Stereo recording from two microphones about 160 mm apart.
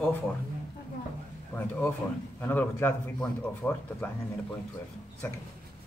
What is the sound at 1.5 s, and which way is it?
A man's voice, 10° left (ahead or behind).